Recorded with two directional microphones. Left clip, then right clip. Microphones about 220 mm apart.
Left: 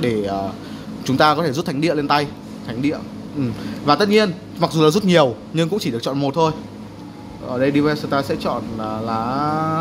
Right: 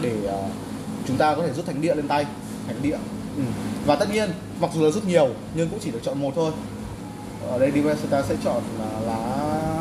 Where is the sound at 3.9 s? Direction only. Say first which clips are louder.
Left 6 dB; 50° left (ahead or behind).